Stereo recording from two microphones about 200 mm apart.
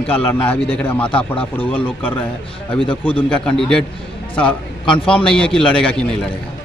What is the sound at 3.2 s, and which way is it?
A man's voice, 5° left (ahead or behind).